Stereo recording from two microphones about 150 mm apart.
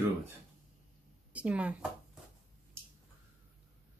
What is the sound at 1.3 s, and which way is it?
Speech, 10° right (ahead or behind).